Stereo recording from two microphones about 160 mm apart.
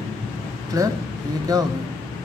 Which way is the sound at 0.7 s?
20° right (ahead or behind).